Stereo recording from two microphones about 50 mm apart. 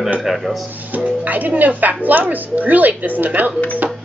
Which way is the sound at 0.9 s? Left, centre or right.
Right.